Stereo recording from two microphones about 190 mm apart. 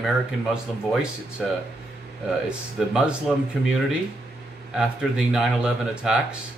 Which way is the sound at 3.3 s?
Centre (ahead or behind).